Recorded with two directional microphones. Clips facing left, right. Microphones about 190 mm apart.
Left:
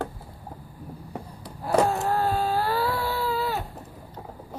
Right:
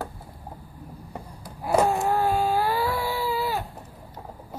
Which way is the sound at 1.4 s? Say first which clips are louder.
Even; 10° right (ahead or behind).